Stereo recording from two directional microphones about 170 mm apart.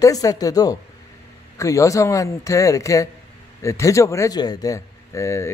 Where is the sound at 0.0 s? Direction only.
20° left (ahead or behind).